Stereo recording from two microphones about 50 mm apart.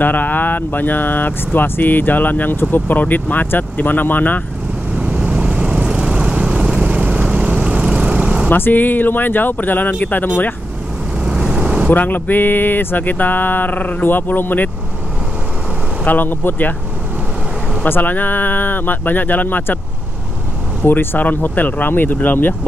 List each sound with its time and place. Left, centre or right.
0.0 s speech: left
4.9 s vehicle: right
8.5 s speech: left
11.2 s vehicle: centre
11.9 s speech: left
16.0 s speech: left
17.8 s speech: left
20.8 s speech: left